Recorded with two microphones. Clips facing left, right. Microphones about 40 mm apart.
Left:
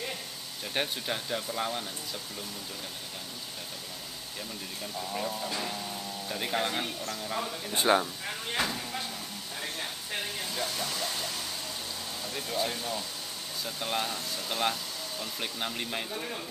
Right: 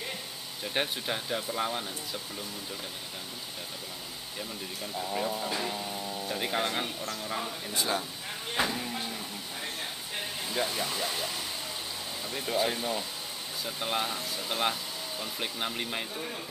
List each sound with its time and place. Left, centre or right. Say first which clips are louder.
0.7 s speech: right 1 dB; centre
5.1 s speech: right 2 dB; centre
7.7 s speech: left 7 dB; left
8.5 s a sound: right 2 dB; centre
10.5 s speech: right 5 dB; centre